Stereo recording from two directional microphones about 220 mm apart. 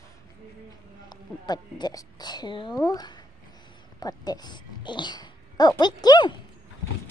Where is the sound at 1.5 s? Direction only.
20° left (ahead or behind).